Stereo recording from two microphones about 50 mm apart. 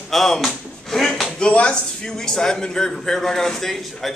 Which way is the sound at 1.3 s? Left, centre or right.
Centre.